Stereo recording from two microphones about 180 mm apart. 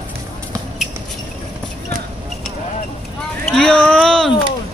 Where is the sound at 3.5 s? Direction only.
5° left (ahead or behind).